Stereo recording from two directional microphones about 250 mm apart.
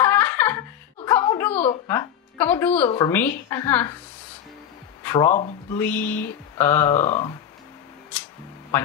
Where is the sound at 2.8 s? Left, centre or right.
Left.